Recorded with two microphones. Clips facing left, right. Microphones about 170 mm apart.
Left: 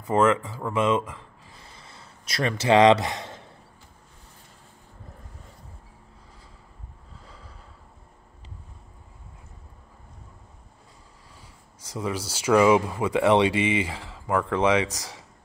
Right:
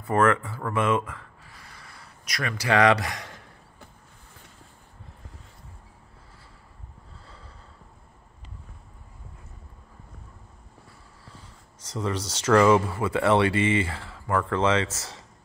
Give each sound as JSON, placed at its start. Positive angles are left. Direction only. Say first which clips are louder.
{"t": 0.0, "sound": "speech", "louder": "left 1 dB", "side_deg": 20}
{"t": 7.2, "sound": "a sound", "louder": "left 2 dB", "side_deg": 15}
{"t": 11.4, "sound": "speech", "louder": "even", "side_deg": 10}